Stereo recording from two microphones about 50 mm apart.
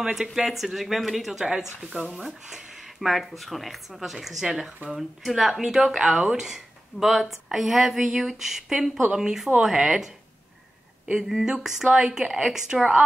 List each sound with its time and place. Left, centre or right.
0.0 s a woman's voice: centre
2.0 s speech: right
2.5 s a woman's voice: centre
11.4 s a woman's voice: centre